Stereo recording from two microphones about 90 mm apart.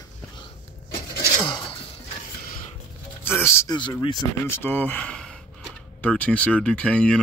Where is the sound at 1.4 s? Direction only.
65° left (ahead or behind).